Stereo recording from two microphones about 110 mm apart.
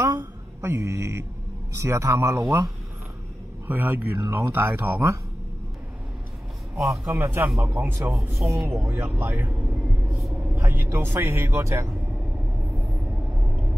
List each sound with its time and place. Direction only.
0.1 s mantra: 30° right (ahead or behind)
1.8 s speech: 25° right (ahead or behind)
3.6 s speech: 15° right (ahead or behind)
7.2 s speech: 20° right (ahead or behind)
10.2 s vehicle: 10° right (ahead or behind)
10.6 s speech: 20° right (ahead or behind)
13.4 s vehicle: 10° right (ahead or behind)